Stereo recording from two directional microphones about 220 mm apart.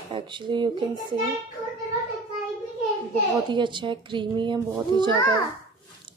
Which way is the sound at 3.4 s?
20° right (ahead or behind).